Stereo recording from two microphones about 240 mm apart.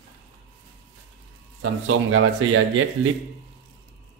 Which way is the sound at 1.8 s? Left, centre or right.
Right.